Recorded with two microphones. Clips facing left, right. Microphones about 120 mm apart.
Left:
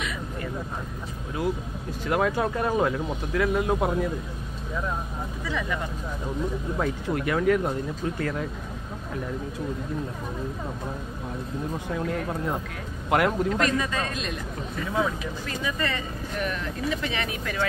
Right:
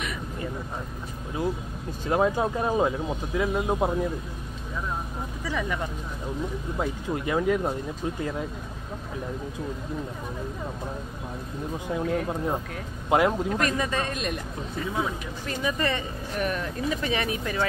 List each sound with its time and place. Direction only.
2.0 s speech: 25° right (ahead or behind)
6.8 s speech: 20° right (ahead or behind)
11.9 s speech: 20° right (ahead or behind)
15.0 s speech: 25° right (ahead or behind)